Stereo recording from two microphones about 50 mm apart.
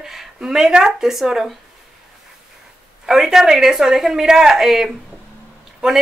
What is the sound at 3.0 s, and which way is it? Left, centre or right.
Speech, centre.